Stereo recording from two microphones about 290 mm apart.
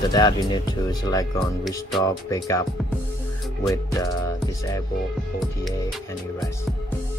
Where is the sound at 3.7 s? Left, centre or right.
Centre.